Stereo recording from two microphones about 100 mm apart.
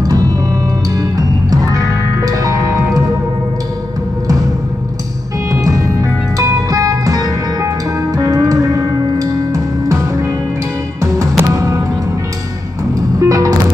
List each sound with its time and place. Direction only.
0.0 s music: 35° right (ahead or behind)
5.5 s music: 35° right (ahead or behind)
13.2 s music: 35° right (ahead or behind)